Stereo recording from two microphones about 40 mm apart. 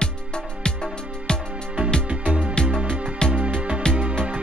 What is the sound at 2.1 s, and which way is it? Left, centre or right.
Music, right.